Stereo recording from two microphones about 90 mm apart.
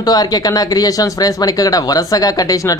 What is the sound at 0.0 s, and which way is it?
Speech, 45° left (ahead or behind).